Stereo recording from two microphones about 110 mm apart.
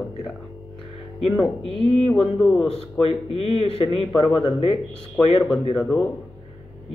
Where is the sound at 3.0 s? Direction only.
55° left (ahead or behind).